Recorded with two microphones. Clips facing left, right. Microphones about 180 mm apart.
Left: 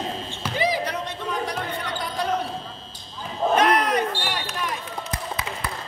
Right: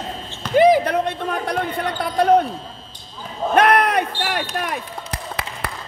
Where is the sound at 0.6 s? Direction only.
55° right (ahead or behind).